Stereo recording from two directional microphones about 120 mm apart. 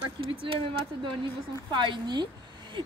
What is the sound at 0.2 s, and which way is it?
A woman's voice, 45° right (ahead or behind).